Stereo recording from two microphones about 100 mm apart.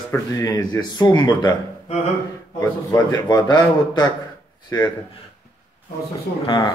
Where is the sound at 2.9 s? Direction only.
40° left (ahead or behind).